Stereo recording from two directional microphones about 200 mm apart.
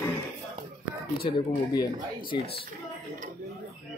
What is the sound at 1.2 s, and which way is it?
Speech, 25° left (ahead or behind).